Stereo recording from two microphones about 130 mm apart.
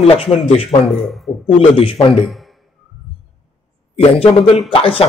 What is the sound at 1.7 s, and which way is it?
Speech, 40° left (ahead or behind).